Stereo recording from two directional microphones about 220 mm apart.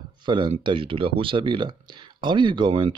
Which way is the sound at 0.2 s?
20° right (ahead or behind).